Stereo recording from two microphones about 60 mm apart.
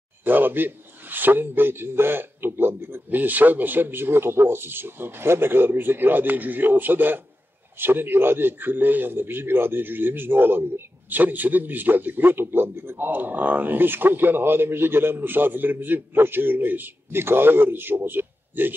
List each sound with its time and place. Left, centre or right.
0.2 s a man's voice: right